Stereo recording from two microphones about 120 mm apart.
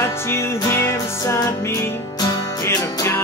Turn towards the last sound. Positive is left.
turn(degrees=20)  # may be behind; listen again after turning